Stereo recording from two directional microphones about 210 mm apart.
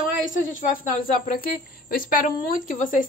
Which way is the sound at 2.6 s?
40° left (ahead or behind).